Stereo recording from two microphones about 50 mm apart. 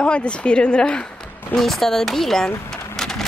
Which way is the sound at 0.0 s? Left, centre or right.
Left.